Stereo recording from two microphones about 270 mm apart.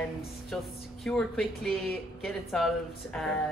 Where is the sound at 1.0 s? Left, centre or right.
Centre.